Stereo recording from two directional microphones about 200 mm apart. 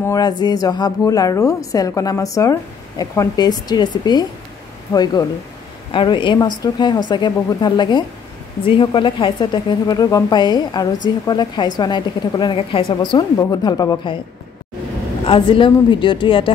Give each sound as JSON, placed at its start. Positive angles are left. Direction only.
{"t": 0.0, "sound": "a woman's voice", "side_deg": 20}
{"t": 15.2, "sound": "a woman's voice", "side_deg": 25}